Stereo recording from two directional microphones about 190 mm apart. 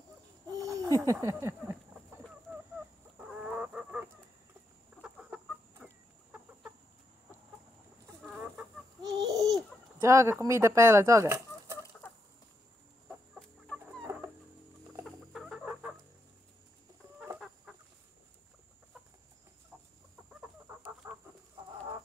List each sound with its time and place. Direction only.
0.5 s a sound: 15° right (ahead or behind)
3.2 s chicken: 5° right (ahead or behind)
5.0 s chicken: 5° right (ahead or behind)
8.2 s chicken: centre (ahead or behind)
9.0 s babbling: 20° right (ahead or behind)
10.0 s speech: 15° right (ahead or behind)
10.4 s chicken: 15° right (ahead or behind)
15.0 s chicken: centre (ahead or behind)
20.6 s chicken: 15° right (ahead or behind)